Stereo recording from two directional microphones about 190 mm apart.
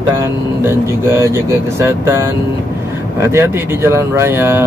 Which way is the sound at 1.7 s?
15° right (ahead or behind).